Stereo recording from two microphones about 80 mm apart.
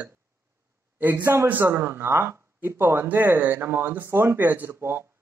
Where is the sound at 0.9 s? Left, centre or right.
Right.